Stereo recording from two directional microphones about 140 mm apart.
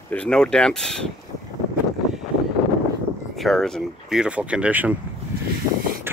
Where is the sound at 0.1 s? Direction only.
5° left (ahead or behind).